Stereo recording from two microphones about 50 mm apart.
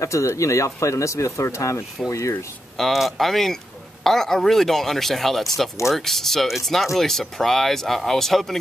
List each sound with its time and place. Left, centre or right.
0.0 s speech: left
2.8 s speech: centre